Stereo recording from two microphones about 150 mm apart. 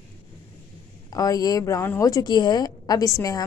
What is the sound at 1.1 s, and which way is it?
A woman's voice, 25° left (ahead or behind).